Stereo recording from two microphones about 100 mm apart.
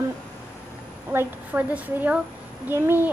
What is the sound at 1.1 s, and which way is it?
A woman's voice, 15° right (ahead or behind).